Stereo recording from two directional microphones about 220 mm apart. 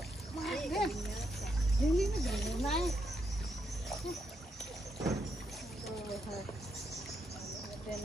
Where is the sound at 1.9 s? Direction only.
Centre (ahead or behind).